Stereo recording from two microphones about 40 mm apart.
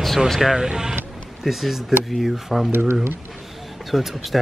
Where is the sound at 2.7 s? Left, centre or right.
Right.